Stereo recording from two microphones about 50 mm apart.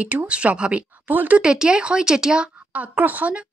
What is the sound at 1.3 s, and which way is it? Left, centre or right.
Speech, centre.